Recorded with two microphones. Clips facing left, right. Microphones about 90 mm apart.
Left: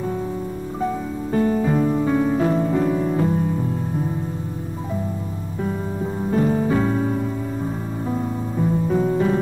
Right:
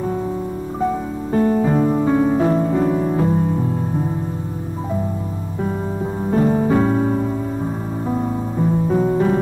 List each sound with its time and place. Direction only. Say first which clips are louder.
1.3 s music: right 3 dB; 25° right (ahead or behind)
6.2 s music: right 3 dB; 25° right (ahead or behind)